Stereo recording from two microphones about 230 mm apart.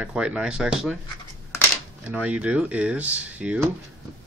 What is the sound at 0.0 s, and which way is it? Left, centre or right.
Speech, centre.